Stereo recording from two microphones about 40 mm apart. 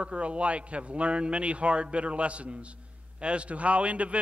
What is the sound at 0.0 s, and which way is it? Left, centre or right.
A man's voice, right.